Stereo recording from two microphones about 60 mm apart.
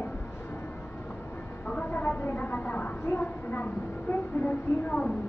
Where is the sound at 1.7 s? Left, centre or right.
Left.